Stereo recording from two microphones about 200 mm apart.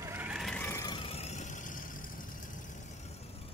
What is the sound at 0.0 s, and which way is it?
Vehicle, 10° right (ahead or behind).